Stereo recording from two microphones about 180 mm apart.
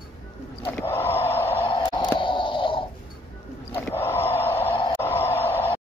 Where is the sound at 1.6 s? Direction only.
25° left (ahead or behind).